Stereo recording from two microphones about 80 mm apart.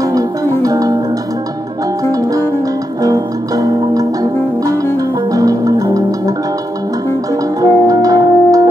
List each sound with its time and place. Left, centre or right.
0.0 s music: right
3.0 s music: right
7.6 s music: right